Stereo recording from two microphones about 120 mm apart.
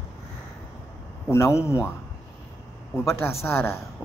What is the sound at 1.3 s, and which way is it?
Speech, 25° left (ahead or behind).